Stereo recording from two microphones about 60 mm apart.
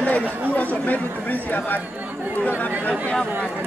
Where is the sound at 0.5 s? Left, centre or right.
Left.